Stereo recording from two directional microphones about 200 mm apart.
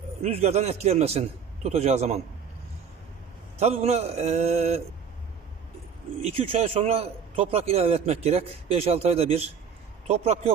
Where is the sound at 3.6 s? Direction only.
35° right (ahead or behind).